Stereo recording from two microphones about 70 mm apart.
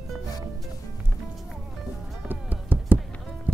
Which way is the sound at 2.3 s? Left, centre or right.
Right.